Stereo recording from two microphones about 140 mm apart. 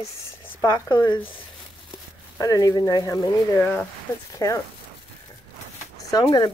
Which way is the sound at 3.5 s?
10° left (ahead or behind).